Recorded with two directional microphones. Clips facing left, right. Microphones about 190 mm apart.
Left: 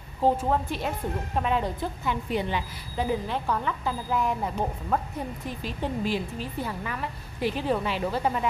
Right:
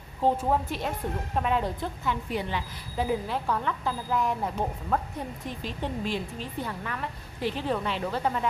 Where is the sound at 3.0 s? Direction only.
Centre (ahead or behind).